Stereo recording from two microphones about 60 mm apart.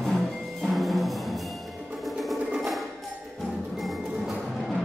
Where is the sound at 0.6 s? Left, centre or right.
Centre.